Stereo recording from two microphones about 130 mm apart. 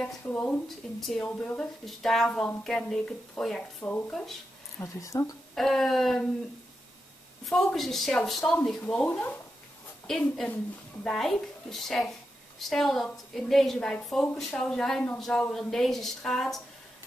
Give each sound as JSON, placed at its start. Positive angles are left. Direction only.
{"t": 0.0, "sound": "a woman's voice", "side_deg": 10}
{"t": 4.7, "sound": "speech", "side_deg": 25}
{"t": 5.5, "sound": "a woman's voice", "side_deg": 0}
{"t": 7.4, "sound": "a woman's voice", "side_deg": 0}